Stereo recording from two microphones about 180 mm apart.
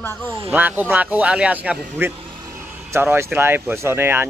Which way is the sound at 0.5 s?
10° right (ahead or behind).